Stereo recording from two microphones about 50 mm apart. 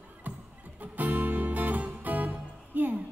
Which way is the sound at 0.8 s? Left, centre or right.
Right.